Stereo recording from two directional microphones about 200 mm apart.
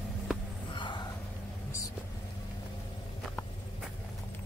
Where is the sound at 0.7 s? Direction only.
25° left (ahead or behind).